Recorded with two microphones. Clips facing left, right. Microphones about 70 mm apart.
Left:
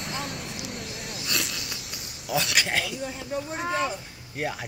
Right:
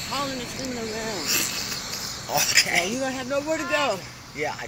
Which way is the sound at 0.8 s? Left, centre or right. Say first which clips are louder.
Right 7 dB; right.